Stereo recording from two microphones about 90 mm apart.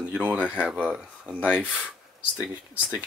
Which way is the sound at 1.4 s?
15° left (ahead or behind).